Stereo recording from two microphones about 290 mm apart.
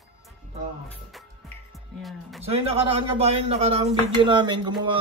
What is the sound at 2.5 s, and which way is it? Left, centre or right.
Speech, centre.